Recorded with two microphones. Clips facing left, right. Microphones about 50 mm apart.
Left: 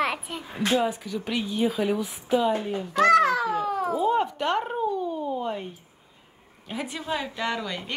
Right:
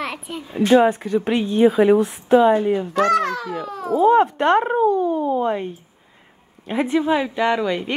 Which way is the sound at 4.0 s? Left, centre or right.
Right.